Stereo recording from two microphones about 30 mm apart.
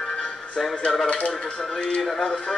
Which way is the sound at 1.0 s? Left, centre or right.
Left.